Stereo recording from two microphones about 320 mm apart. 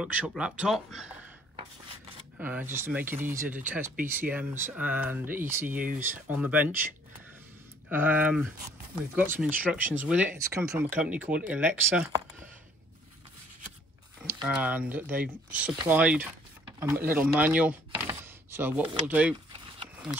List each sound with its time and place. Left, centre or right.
0.0 s speech: centre
2.3 s speech: centre
7.9 s speech: centre
14.2 s speech: centre